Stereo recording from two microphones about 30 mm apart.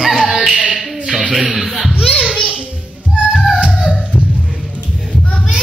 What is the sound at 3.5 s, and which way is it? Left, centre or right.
Music, right.